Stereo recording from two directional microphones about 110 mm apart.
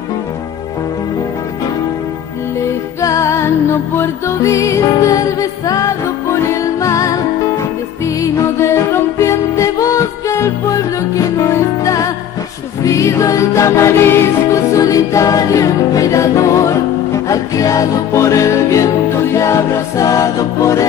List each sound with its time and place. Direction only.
3.0 s music: 30° left (ahead or behind)
8.2 s music: 25° left (ahead or behind)